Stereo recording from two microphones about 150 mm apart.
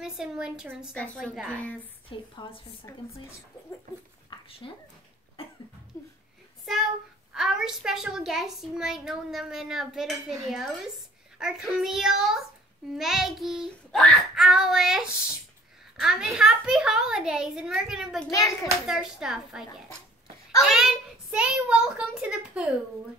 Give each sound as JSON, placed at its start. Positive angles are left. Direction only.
{"t": 0.0, "sound": "a woman's voice", "side_deg": -5}
{"t": 2.4, "sound": "a child's voice", "side_deg": 30}
{"t": 4.3, "sound": "a sound", "side_deg": 40}
{"t": 5.4, "sound": "cough", "side_deg": 40}
{"t": 7.3, "sound": "a woman's voice", "side_deg": -5}
{"t": 18.3, "sound": "a child's voice", "side_deg": 20}
{"t": 18.9, "sound": "a woman's voice", "side_deg": -5}
{"t": 20.6, "sound": "a child's voice", "side_deg": -5}